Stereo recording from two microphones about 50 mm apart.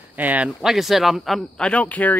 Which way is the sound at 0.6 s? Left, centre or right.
Centre.